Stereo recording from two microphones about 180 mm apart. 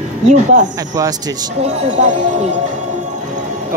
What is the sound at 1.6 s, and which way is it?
Speech, 40° right (ahead or behind).